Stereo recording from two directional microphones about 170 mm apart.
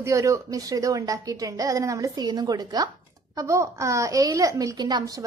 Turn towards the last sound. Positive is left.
turn(degrees=-25)  # may be behind; listen again after turning